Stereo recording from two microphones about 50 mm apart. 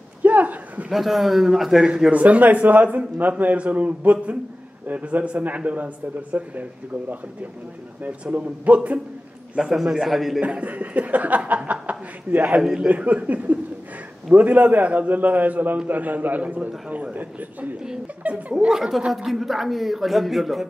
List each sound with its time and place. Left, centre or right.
0.2 s a sound: right
0.8 s a man's voice: centre
2.0 s a man's voice: right
9.6 s a man's voice: centre
10.4 s speech: right
18.3 s a man's voice: right
18.7 s a man's voice: centre